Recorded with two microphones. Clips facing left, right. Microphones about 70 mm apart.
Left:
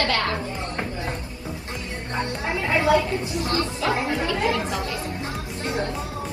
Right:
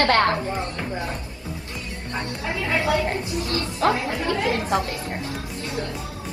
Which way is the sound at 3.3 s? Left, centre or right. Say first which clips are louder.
Left 2 dB; left.